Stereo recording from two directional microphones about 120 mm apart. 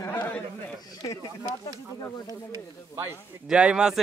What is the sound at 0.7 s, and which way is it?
Speech, 30° left (ahead or behind).